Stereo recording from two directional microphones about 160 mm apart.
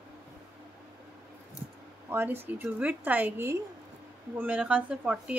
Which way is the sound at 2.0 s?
15° right (ahead or behind).